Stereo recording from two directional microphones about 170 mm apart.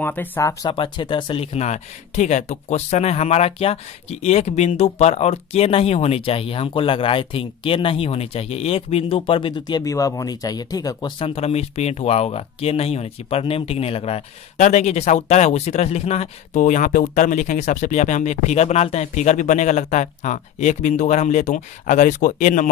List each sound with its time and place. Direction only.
0.0 s speech: 10° left (ahead or behind); by 22.7 s 50° left (ahead or behind)